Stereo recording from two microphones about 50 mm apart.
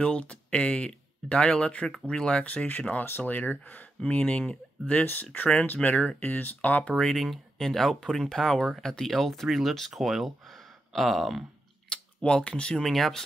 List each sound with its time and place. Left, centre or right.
0.0 s speech: left
2.4 s speech: left
6.9 s speech: centre
11.9 s speech: centre
12.8 s speech: centre